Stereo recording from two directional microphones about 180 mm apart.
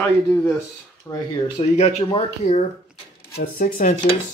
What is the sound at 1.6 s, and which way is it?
Speech, 35° left (ahead or behind).